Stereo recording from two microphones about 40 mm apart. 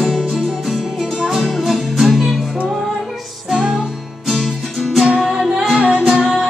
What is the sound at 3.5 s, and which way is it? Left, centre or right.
Music, centre.